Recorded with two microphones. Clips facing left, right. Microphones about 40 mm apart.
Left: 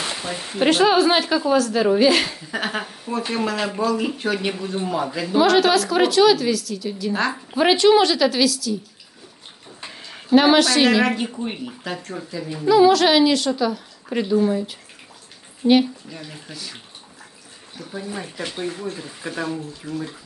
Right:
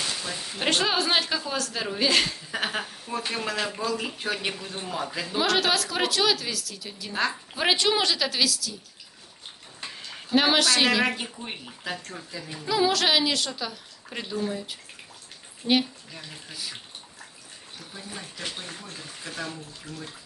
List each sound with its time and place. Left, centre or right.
0.0 s a sound: left
0.7 s a woman's voice: centre
4.8 s a woman's voice: centre
5.3 s speech: centre
9.9 s a woman's voice: centre
15.6 s a woman's voice: centre
17.7 s speech: centre